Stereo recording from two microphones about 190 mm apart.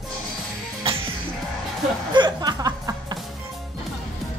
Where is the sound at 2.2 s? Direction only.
20° right (ahead or behind).